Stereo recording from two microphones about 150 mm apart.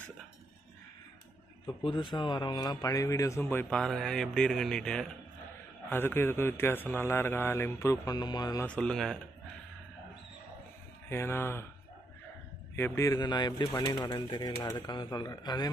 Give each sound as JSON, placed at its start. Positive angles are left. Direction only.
{"t": 1.8, "sound": "a man's voice", "side_deg": 35}
{"t": 3.7, "sound": "speech", "side_deg": 5}
{"t": 5.9, "sound": "a man's voice", "side_deg": 15}
{"t": 8.6, "sound": "speech", "side_deg": 5}
{"t": 11.1, "sound": "a man's voice", "side_deg": 15}
{"t": 12.7, "sound": "a man's voice", "side_deg": 15}